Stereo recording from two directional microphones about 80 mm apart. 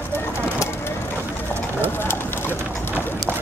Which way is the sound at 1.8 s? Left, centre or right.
Left.